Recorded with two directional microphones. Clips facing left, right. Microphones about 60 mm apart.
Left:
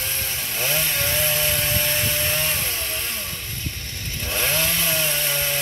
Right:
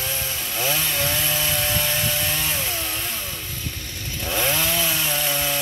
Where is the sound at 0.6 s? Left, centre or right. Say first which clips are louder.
Right 1 dB; centre.